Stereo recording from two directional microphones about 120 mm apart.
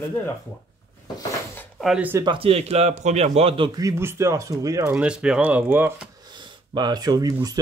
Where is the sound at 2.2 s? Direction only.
40° right (ahead or behind).